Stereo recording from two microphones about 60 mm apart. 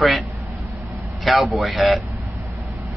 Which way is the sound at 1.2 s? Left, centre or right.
Centre.